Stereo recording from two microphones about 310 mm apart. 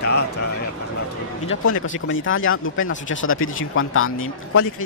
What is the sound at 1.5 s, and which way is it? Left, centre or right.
Speech, left.